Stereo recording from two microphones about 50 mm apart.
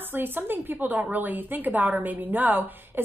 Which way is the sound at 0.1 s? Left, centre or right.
Right.